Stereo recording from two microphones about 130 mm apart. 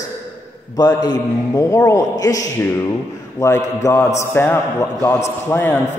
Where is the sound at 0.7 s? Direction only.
30° left (ahead or behind).